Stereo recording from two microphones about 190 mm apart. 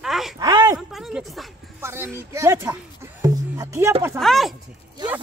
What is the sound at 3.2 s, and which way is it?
Music, 20° right (ahead or behind).